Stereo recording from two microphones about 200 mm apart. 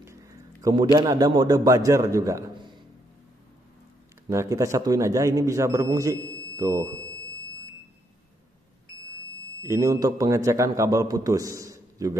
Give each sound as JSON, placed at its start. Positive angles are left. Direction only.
{"t": 0.0, "sound": "a sound", "side_deg": -15}
{"t": 0.9, "sound": "speech", "side_deg": -20}
{"t": 4.3, "sound": "speech", "side_deg": -15}
{"t": 9.6, "sound": "speech", "side_deg": -15}